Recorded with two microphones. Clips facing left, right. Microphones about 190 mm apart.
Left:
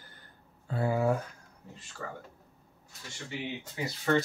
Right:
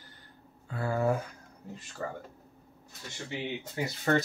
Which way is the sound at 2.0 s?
40° right (ahead or behind).